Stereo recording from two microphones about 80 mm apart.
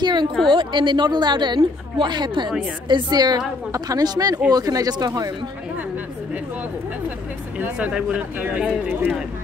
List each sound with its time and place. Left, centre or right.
0.0 s a woman's voice: right
0.5 s a woman's voice: right
2.9 s a woman's voice: right
7.5 s speech: centre